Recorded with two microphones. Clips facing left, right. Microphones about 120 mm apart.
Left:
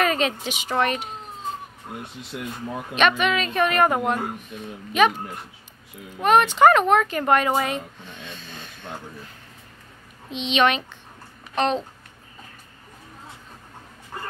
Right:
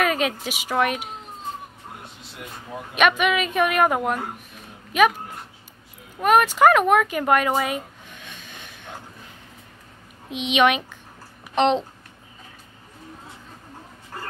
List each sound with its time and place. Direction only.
0.0 s a woman's voice: 5° right (ahead or behind)
2.9 s a woman's voice: 10° right (ahead or behind)
6.1 s speech: 5° right (ahead or behind)
10.3 s a woman's voice: 10° right (ahead or behind)